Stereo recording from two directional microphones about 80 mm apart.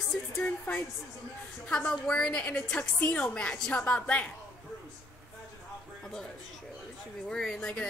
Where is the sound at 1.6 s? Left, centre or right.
Centre.